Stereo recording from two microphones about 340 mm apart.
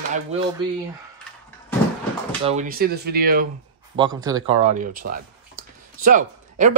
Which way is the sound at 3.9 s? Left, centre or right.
Centre.